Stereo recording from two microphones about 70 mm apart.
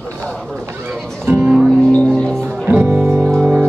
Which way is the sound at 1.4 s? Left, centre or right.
Centre.